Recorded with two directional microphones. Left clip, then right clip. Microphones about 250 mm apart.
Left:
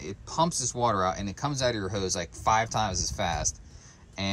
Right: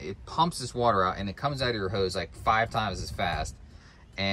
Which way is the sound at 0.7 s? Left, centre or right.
Centre.